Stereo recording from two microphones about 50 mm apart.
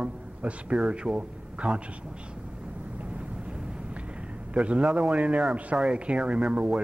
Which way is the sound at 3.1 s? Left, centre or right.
Right.